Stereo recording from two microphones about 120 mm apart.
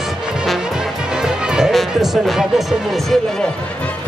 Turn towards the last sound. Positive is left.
turn(degrees=0)  # may be behind; listen again after turning